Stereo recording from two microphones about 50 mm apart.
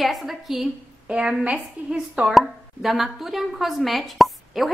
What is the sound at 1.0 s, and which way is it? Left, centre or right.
Speech, centre.